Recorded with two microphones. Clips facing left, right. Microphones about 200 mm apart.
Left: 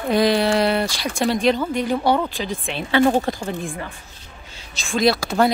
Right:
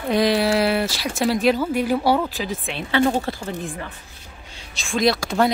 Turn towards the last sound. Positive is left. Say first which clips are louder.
# left 1 dB
turn(degrees=5)  # may be behind; listen again after turning